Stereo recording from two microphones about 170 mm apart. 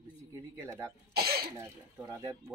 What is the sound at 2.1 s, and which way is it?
Speech, 20° right (ahead or behind).